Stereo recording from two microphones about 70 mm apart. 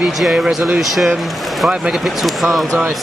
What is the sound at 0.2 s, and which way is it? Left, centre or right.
Speech, centre.